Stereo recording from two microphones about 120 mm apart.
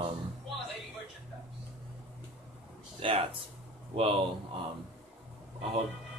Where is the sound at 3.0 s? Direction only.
50° right (ahead or behind).